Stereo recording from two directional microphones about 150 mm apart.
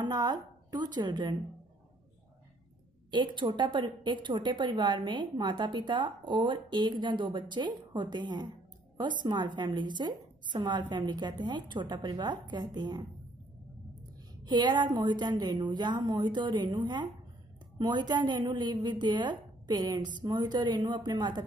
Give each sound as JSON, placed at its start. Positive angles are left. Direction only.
{"t": 0.0, "sound": "a woman's voice", "side_deg": -25}
{"t": 3.1, "sound": "a woman's voice", "side_deg": -30}
{"t": 14.4, "sound": "a woman's voice", "side_deg": -30}